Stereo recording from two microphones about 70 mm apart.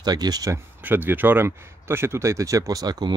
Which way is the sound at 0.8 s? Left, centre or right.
Right.